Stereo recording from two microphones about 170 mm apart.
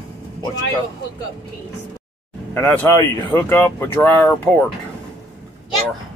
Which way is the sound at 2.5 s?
10° left (ahead or behind).